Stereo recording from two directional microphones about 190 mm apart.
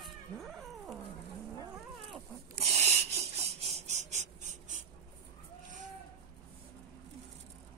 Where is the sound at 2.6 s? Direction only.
35° right (ahead or behind).